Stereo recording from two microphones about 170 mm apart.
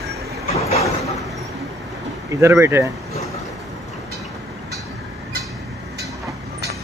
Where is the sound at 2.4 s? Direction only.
15° right (ahead or behind).